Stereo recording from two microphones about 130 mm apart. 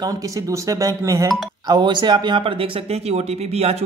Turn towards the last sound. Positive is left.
turn(degrees=-55)  # may be behind; listen again after turning